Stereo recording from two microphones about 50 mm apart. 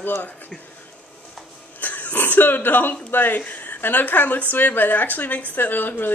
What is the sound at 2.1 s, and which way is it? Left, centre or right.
Speech, left.